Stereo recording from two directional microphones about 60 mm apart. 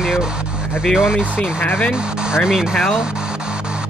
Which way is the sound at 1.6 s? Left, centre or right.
Left.